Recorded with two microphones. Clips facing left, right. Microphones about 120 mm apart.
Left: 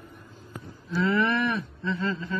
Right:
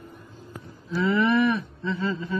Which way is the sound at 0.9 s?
Centre (ahead or behind).